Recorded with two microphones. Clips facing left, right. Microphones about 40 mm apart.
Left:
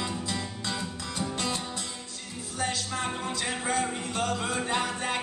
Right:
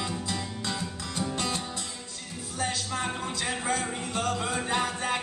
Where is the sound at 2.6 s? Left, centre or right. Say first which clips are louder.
Even; centre.